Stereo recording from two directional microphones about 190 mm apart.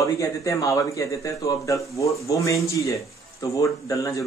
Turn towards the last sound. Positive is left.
turn(degrees=15)  # may be behind; listen again after turning